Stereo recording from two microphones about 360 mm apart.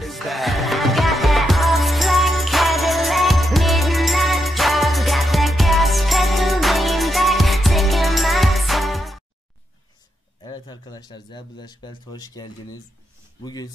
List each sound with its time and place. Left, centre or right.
0.0 s music: centre
10.4 s a sound: centre
13.4 s speech: centre